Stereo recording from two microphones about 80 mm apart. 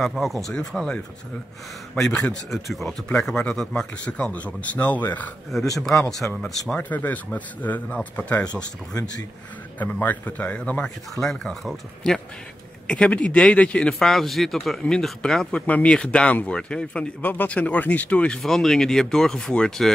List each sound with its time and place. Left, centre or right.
0.0 s speech: centre; by 5.3 s left
5.5 s speech: centre
6.7 s speech: left
9.8 s speech: left